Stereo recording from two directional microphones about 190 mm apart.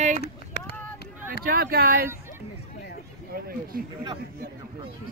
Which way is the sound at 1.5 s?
55° right (ahead or behind).